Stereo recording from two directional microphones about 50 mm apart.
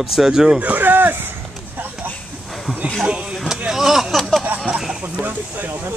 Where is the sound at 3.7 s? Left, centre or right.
Centre.